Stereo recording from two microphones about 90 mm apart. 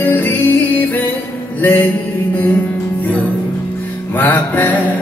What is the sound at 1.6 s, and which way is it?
Mantra, 20° left (ahead or behind).